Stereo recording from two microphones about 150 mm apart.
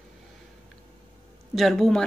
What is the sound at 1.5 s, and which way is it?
Speech, centre (ahead or behind).